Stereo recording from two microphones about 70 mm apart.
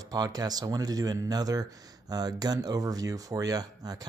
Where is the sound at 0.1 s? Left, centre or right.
Right.